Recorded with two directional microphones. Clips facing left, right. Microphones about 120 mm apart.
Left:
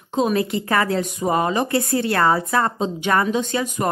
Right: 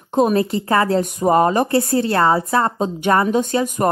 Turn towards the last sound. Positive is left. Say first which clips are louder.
# right 4 dB
turn(degrees=-45)  # may be behind; listen again after turning